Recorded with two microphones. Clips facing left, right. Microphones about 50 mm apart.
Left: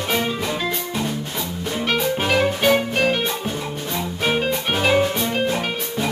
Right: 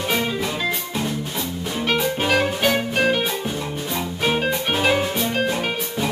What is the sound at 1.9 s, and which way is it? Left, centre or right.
Music, centre.